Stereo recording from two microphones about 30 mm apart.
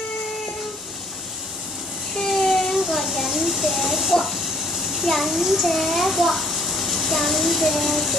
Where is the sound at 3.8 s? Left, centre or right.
Centre.